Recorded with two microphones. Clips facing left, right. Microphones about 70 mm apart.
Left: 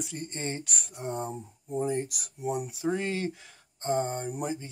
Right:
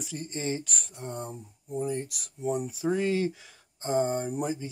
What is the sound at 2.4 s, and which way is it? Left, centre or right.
Speech, centre.